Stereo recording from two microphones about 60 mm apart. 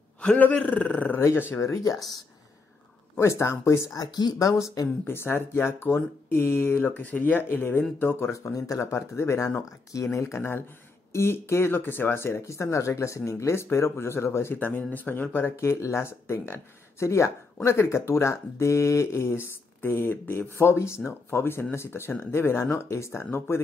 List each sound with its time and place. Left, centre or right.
0.4 s speech: left
1.8 s speech: left
3.2 s speech: left
3.9 s speech: left
5.0 s speech: left
7.4 s speech: left
8.3 s speech: left
8.9 s speech: left
14.6 s speech: left
15.5 s speech: left